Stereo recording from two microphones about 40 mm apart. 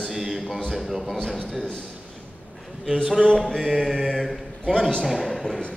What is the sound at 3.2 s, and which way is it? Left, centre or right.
Mantra, centre.